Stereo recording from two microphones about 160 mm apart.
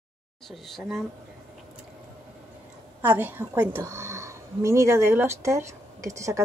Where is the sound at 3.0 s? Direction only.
10° right (ahead or behind).